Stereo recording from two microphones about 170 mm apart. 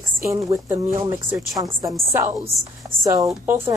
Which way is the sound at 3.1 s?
20° right (ahead or behind).